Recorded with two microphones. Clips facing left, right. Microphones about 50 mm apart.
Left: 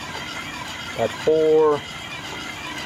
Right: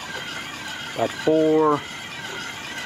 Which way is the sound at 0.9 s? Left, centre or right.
Centre.